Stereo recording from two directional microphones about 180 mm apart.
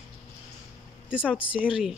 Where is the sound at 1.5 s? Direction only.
5° right (ahead or behind).